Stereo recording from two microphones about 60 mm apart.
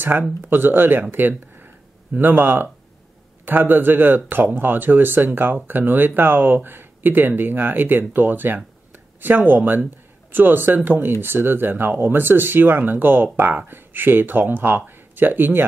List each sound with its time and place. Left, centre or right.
0.4 s speech: right